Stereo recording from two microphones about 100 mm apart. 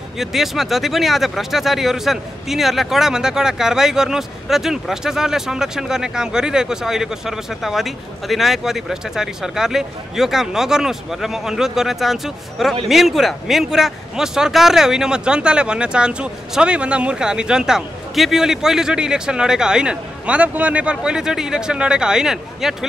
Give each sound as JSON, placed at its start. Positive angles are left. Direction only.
{"t": 0.2, "sound": "a man's voice", "side_deg": -5}